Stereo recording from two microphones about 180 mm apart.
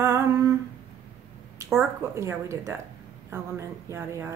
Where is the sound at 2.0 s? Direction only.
15° right (ahead or behind).